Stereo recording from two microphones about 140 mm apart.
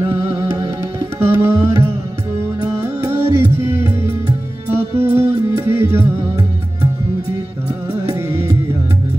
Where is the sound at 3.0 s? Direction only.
15° right (ahead or behind).